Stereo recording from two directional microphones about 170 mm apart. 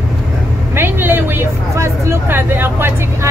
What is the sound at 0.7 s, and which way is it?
Speech, 10° right (ahead or behind).